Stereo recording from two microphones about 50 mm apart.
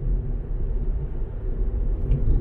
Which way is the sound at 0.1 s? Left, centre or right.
Centre.